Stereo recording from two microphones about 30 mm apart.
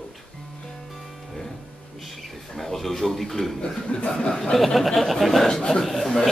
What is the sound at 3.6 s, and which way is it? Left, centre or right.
Speech, left.